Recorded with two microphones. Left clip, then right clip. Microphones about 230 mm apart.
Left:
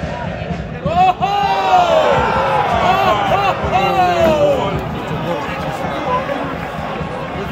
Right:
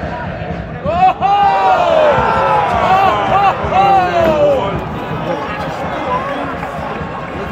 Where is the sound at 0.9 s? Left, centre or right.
Left.